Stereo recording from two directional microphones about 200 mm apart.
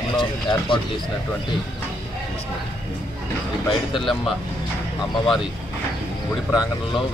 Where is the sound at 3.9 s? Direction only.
Centre (ahead or behind).